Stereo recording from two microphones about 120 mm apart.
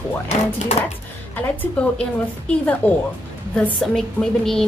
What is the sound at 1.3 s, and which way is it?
A woman's voice, 10° left (ahead or behind).